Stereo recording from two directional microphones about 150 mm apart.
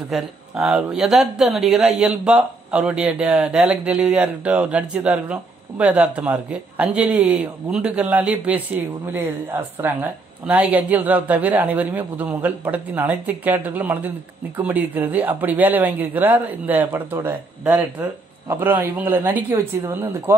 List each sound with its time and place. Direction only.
0.1 s speech: 5° right (ahead or behind)